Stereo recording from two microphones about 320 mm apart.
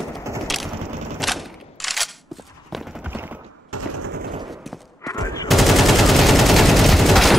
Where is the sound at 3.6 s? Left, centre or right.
Right.